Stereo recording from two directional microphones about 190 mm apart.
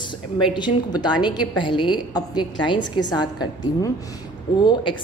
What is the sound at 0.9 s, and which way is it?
A woman's voice, 20° left (ahead or behind).